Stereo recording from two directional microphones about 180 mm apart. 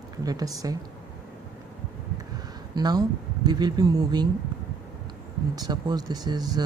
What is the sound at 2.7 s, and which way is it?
Speech, 25° right (ahead or behind).